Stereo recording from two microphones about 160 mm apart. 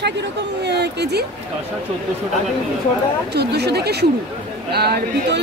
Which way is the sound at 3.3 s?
90° right.